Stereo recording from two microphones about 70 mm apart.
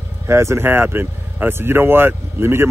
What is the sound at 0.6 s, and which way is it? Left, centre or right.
Speech, right.